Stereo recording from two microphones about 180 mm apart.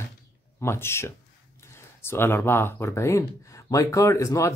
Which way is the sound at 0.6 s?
15° left (ahead or behind).